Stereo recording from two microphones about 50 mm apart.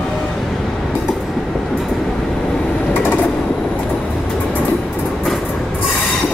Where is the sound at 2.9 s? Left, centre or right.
Left.